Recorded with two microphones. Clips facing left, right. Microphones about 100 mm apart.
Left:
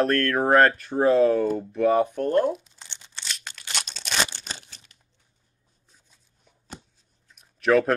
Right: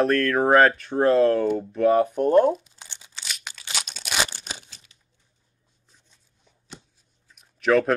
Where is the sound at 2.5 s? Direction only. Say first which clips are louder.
Right 3 dB; 5° right (ahead or behind).